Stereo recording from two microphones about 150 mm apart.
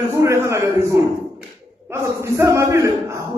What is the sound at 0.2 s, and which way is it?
Speech, 20° right (ahead or behind).